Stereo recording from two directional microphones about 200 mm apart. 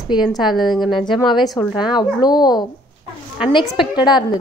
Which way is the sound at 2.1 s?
20° left (ahead or behind).